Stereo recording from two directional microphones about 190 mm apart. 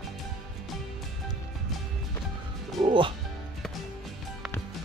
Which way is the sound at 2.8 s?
25° right (ahead or behind).